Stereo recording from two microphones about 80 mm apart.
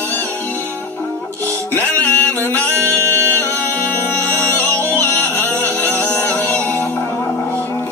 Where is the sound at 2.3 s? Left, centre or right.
Left.